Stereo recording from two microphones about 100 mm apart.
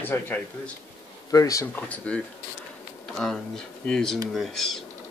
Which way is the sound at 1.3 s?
35° left (ahead or behind).